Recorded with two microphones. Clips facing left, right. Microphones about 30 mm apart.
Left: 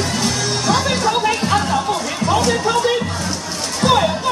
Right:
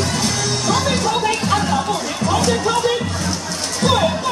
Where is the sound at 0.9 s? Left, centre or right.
Centre.